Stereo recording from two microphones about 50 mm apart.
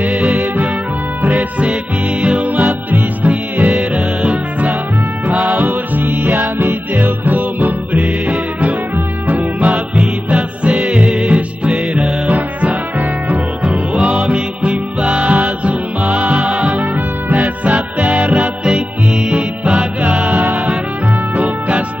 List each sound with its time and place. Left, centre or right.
0.0 s music: right
13.9 s music: centre
21.4 s music: right